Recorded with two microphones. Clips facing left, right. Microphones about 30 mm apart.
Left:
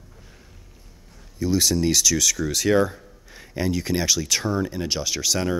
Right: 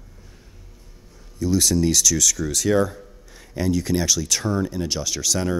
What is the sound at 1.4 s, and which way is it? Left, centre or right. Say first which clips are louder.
Speech: right 1 dB; centre.